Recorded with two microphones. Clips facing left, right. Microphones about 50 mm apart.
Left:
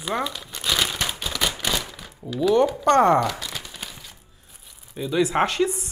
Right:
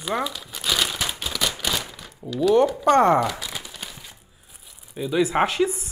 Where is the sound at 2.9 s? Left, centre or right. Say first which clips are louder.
Left 1 dB; centre.